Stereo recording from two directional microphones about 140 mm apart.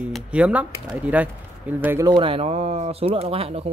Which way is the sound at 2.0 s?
35° right (ahead or behind).